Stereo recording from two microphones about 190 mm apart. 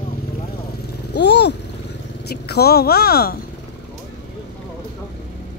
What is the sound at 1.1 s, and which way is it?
Vehicle, 65° left (ahead or behind).